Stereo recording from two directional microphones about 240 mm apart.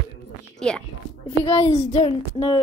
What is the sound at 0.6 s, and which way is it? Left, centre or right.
Speech, centre.